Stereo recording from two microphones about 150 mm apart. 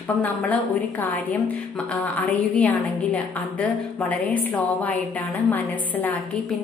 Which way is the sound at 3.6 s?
10° left (ahead or behind).